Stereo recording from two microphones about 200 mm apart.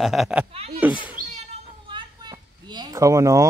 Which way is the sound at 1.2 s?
45° right (ahead or behind).